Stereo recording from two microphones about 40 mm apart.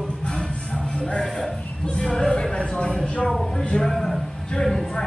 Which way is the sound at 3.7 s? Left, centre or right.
Centre.